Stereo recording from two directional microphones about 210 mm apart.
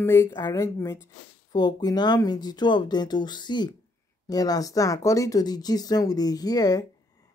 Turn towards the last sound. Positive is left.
turn(degrees=20)  # may be behind; listen again after turning